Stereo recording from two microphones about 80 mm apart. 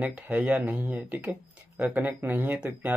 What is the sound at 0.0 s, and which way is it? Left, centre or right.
Speech, centre.